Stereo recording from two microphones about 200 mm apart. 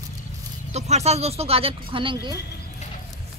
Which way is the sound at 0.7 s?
35° right (ahead or behind).